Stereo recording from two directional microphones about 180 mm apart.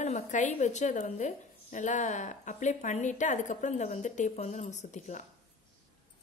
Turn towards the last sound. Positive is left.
turn(degrees=40)  # may be behind; listen again after turning